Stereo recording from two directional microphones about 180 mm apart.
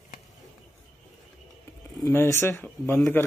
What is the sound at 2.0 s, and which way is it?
Speech, 15° left (ahead or behind).